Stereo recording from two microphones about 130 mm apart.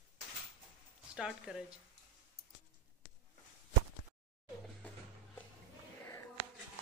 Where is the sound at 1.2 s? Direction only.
5° right (ahead or behind).